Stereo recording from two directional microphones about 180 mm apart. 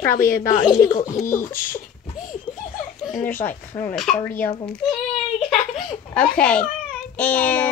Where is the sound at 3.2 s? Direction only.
10° left (ahead or behind).